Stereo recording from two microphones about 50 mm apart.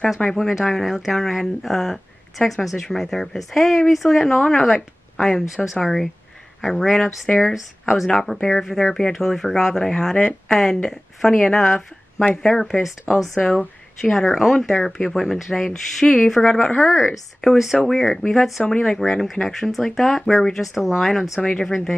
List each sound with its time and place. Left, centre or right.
0.2 s speech: centre
16.3 s speech: centre
16.8 s speech: centre